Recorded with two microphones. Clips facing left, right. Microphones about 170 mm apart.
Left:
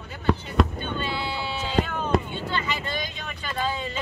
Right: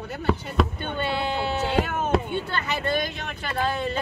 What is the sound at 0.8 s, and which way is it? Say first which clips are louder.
Speech: right 3 dB; 60° right (ahead or behind).